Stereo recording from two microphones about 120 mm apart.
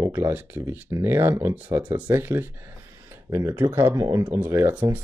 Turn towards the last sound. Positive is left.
turn(degrees=-15)  # may be behind; listen again after turning